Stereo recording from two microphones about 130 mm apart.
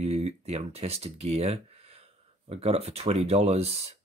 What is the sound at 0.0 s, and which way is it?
Speech, 55° right (ahead or behind).